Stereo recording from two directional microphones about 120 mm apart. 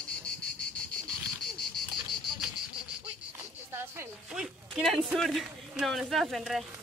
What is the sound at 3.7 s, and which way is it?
Music, 20° right (ahead or behind).